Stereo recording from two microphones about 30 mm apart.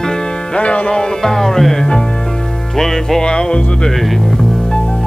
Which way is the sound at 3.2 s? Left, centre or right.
Left.